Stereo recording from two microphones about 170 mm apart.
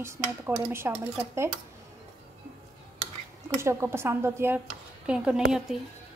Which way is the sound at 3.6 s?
15° right (ahead or behind).